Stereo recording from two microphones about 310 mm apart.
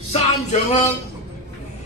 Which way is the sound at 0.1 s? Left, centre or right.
Left.